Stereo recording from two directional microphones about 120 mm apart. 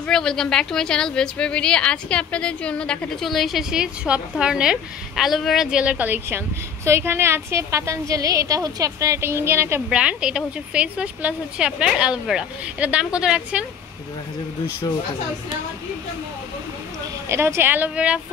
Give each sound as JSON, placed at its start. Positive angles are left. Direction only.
{"t": 0.0, "sound": "a woman's voice", "side_deg": 5}
{"t": 9.8, "sound": "speech", "side_deg": -10}
{"t": 17.3, "sound": "speech", "side_deg": -20}